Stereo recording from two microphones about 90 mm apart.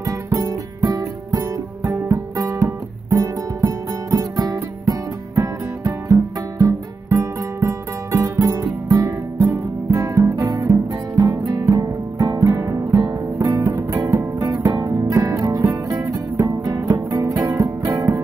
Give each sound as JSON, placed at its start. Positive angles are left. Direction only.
{"t": 0.0, "sound": "music", "side_deg": -40}
{"t": 14.4, "sound": "music", "side_deg": -50}